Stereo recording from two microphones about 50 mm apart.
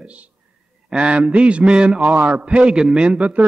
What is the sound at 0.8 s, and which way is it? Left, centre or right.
Speech, right.